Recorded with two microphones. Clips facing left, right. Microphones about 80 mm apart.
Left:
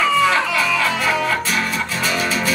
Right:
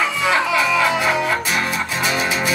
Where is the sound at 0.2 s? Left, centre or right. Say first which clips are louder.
Left 1 dB; centre.